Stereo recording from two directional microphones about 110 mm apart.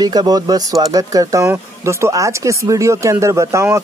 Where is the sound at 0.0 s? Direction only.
40° right (ahead or behind).